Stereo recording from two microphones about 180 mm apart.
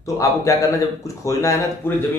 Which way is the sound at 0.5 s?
15° left (ahead or behind).